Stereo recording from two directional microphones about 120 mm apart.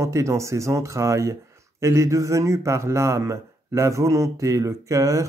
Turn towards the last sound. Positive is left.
turn(degrees=-25)  # may be behind; listen again after turning